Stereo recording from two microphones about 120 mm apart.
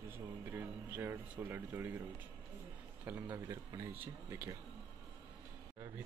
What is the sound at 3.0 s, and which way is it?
Speech, 15° right (ahead or behind).